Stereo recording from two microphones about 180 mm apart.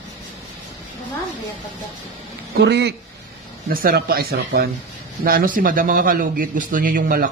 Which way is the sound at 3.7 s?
55° right (ahead or behind).